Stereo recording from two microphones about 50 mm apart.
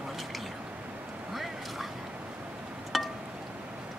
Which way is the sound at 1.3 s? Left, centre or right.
Centre.